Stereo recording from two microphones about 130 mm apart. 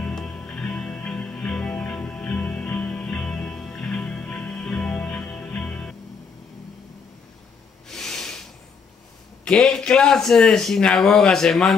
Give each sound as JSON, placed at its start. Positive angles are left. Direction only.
{"t": 0.0, "sound": "music", "side_deg": 5}
{"t": 7.9, "sound": "a sound", "side_deg": 5}
{"t": 9.4, "sound": "speech", "side_deg": 5}